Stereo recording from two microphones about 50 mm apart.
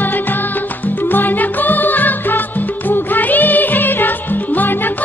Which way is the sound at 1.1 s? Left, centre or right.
Left.